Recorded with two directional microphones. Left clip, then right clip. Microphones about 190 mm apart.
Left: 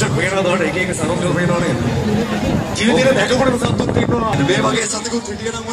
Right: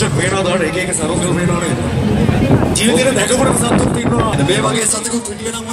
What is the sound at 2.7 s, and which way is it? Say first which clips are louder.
Speech: left 3 dB; 55° right (ahead or behind).